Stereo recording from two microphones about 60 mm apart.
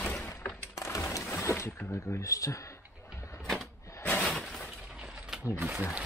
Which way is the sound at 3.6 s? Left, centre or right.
Left.